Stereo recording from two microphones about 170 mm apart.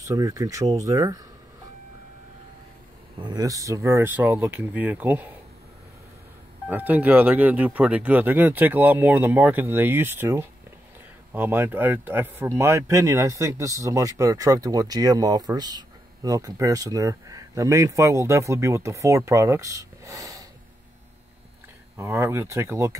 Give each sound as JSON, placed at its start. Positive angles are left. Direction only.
{"t": 0.0, "sound": "speech", "side_deg": -20}
{"t": 3.2, "sound": "speech", "side_deg": -25}
{"t": 6.7, "sound": "speech", "side_deg": -10}
{"t": 21.9, "sound": "speech", "side_deg": -15}